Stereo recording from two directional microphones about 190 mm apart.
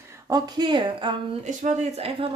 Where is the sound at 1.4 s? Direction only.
40° right (ahead or behind).